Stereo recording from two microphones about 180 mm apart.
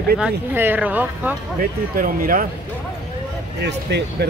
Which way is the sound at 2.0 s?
50° right (ahead or behind).